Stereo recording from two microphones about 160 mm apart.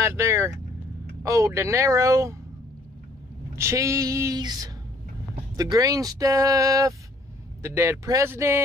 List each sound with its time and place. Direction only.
0.0 s speech: 15° right (ahead or behind)
3.5 s speech: 20° right (ahead or behind)